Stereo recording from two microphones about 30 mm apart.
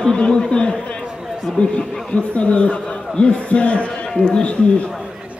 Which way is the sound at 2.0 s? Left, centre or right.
Left.